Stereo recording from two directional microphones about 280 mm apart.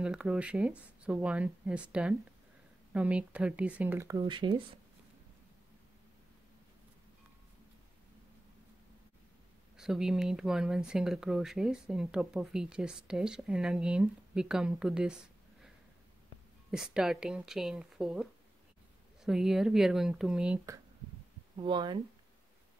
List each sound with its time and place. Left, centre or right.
0.0 s speech: centre
9.8 s speech: centre
16.7 s speech: centre